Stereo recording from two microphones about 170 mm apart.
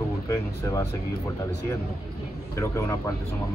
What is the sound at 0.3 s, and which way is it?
Speech, 20° left (ahead or behind).